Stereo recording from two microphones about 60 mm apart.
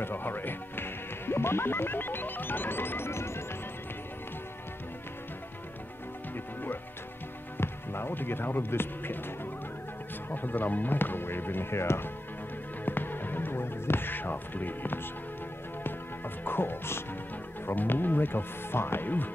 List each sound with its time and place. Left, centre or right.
0.0 s music: left
6.3 s music: left
7.5 s speech: left
10.3 s speech: left
12.8 s music: left
16.4 s speech: left